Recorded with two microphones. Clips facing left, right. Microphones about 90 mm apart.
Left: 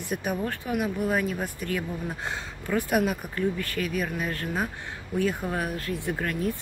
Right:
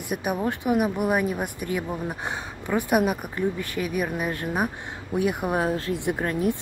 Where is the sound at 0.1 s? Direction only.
10° right (ahead or behind).